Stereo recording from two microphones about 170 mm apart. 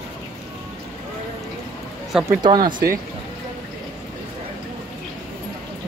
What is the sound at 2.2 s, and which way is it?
Speech, 25° right (ahead or behind).